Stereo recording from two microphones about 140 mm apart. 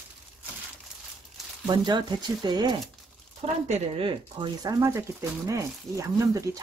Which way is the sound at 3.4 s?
45° right (ahead or behind).